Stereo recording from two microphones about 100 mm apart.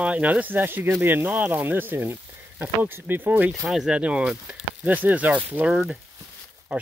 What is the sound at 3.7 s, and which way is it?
Speech, 5° right (ahead or behind).